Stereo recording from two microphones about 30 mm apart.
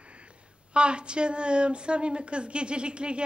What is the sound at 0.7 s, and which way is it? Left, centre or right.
A woman's voice, right.